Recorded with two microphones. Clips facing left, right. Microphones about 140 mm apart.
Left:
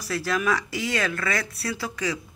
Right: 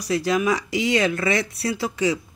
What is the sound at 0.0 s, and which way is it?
Speech, 20° right (ahead or behind).